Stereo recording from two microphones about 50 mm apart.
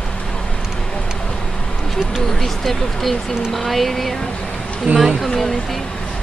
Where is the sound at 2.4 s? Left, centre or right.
Centre.